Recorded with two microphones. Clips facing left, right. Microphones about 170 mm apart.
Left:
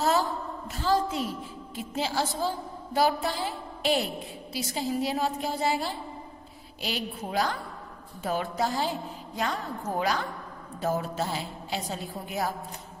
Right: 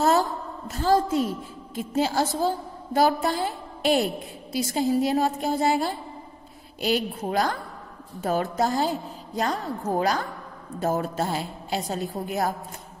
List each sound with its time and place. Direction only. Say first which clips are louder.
0.0 s a woman's voice: right 4 dB; 45° right (ahead or behind)